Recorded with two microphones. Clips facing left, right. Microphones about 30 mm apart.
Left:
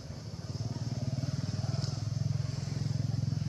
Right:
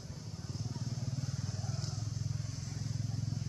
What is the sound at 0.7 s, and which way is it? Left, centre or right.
Vehicle, centre.